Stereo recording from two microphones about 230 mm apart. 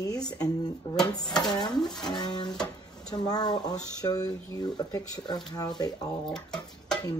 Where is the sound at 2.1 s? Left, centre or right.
Centre.